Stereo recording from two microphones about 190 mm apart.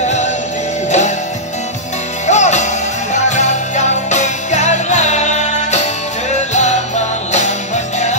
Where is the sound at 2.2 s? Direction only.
40° left (ahead or behind).